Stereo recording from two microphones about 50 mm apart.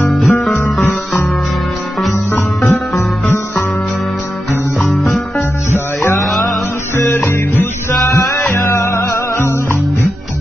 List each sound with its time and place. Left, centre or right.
0.3 s music: left
2.3 s music: left
5.7 s music: left
7.0 s music: left
8.5 s music: left